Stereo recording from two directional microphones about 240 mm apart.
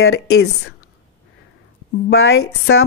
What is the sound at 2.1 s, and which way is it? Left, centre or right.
Speech, left.